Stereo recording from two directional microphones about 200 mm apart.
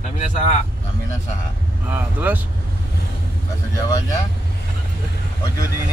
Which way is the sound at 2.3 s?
10° right (ahead or behind).